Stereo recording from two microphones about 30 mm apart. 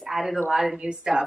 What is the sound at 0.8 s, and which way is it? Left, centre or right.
Speech, right.